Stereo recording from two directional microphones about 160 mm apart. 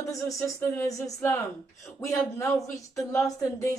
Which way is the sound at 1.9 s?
20° left (ahead or behind).